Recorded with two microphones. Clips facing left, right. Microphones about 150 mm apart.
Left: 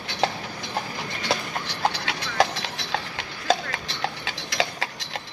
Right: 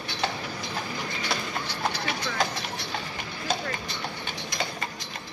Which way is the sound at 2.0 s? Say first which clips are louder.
Left 4 dB; 90° left.